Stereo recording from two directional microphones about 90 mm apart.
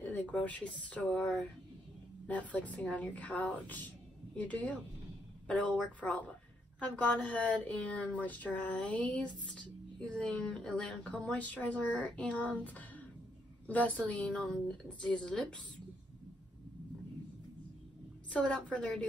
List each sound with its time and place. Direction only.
0.0 s speech: 15° left (ahead or behind)
18.3 s speech: 10° left (ahead or behind)